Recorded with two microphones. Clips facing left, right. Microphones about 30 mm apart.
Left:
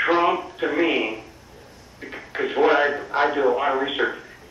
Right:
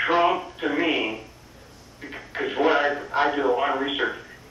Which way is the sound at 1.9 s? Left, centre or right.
Centre.